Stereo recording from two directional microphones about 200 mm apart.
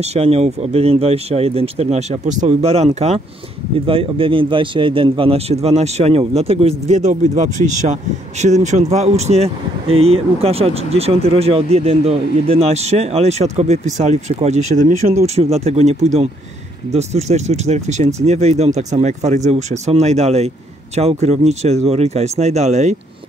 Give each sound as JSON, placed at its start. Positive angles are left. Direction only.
{"t": 0.0, "sound": "a man's voice", "side_deg": -30}